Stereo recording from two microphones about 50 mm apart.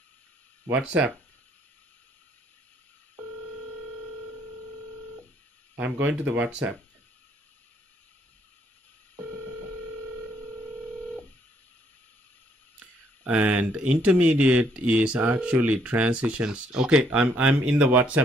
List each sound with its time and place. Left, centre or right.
0.7 s speech: right
5.9 s speech: right
13.2 s speech: right